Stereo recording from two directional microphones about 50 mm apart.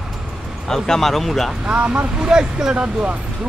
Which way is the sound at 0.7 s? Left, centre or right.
Centre.